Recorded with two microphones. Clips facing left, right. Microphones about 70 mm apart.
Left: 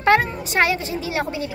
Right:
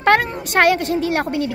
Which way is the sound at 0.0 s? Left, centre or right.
Right.